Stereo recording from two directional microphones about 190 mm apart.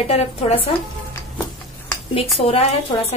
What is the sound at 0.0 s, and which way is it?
Speech, 30° left (ahead or behind).